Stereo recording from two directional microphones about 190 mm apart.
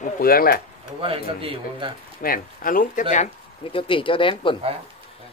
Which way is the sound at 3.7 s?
25° left (ahead or behind).